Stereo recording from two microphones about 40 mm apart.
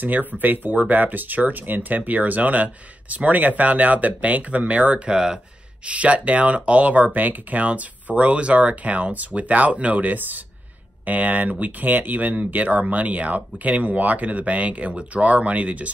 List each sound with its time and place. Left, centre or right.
0.0 s speech: right
5.1 s speech: centre
5.9 s speech: right
10.1 s speech: right
11.1 s speech: right